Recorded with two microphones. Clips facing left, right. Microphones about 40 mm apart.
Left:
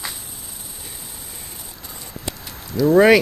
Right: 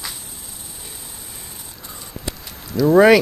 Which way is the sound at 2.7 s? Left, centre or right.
Centre.